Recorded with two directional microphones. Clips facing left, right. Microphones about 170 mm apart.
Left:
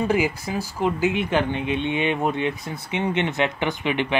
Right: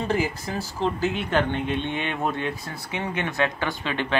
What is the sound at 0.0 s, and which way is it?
Speech, 15° left (ahead or behind).